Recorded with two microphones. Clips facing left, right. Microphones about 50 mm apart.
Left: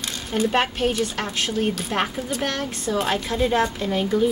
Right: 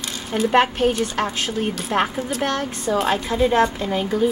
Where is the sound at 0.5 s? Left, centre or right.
Centre.